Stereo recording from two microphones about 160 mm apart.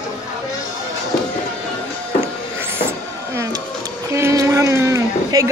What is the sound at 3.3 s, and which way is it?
Printer, 20° right (ahead or behind).